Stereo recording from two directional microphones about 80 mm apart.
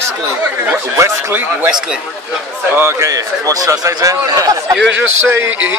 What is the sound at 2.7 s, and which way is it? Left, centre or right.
A man's voice, right.